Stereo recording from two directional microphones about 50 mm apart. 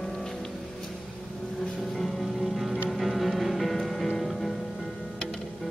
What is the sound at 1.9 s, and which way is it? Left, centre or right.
Music, centre.